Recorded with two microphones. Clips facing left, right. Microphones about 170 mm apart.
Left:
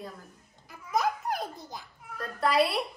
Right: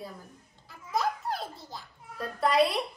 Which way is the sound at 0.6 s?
20° left (ahead or behind).